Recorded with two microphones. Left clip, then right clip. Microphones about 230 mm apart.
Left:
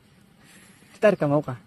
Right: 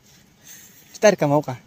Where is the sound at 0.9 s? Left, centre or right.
Centre.